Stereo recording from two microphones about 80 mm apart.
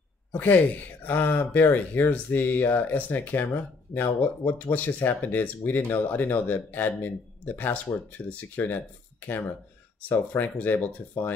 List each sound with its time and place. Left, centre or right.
0.3 s speech: left